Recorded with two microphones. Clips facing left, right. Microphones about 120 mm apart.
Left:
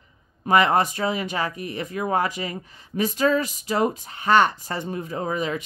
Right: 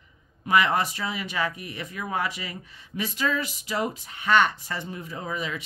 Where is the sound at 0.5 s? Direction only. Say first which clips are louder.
Left 4 dB; 40° left (ahead or behind).